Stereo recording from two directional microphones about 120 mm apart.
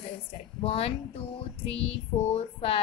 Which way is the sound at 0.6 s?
50° left (ahead or behind).